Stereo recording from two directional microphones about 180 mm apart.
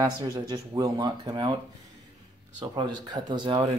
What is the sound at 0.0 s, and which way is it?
Speech, 20° right (ahead or behind).